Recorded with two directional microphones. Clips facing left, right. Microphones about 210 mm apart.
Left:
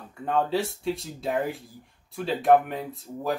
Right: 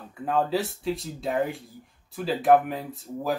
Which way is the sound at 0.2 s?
Centre (ahead or behind).